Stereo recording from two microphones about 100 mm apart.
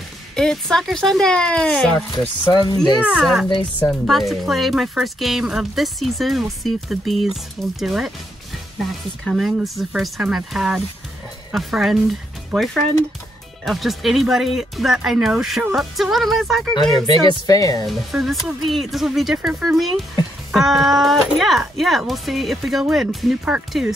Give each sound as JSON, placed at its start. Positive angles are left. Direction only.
{"t": 0.4, "sound": "speech", "side_deg": 5}
{"t": 2.5, "sound": "speech", "side_deg": 45}
{"t": 3.0, "sound": "speech", "side_deg": -10}
{"t": 16.9, "sound": "speech", "side_deg": 40}
{"t": 17.8, "sound": "speech", "side_deg": 0}